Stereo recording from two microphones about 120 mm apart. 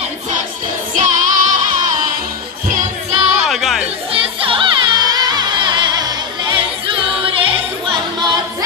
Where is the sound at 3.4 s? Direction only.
Centre (ahead or behind).